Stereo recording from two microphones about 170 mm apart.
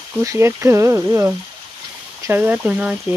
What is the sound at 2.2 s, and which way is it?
Speech, 10° right (ahead or behind).